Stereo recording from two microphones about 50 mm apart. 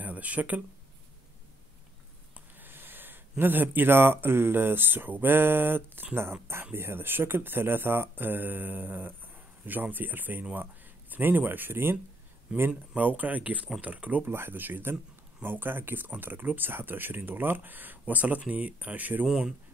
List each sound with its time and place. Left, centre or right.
0.0 s speech: right
2.5 s speech: right
12.5 s speech: right
14.3 s speech: right
19.2 s speech: centre